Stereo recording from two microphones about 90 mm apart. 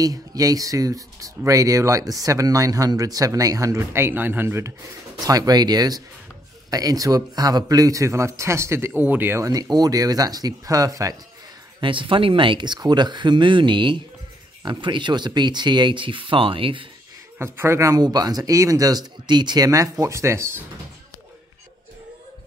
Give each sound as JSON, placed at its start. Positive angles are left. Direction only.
{"t": 0.0, "sound": "speech", "side_deg": -40}
{"t": 5.2, "sound": "speech", "side_deg": -45}
{"t": 9.4, "sound": "speech", "side_deg": -45}
{"t": 11.8, "sound": "speech", "side_deg": -70}
{"t": 17.4, "sound": "speech", "side_deg": -30}
{"t": 18.0, "sound": "speech", "side_deg": -45}